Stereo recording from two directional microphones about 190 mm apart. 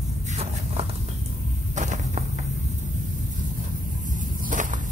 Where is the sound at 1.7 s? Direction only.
40° right (ahead or behind).